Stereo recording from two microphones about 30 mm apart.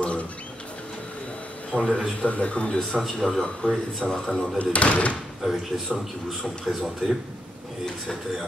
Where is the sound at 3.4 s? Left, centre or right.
Centre.